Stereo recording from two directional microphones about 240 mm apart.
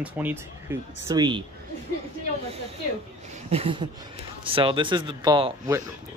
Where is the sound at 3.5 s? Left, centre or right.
Right.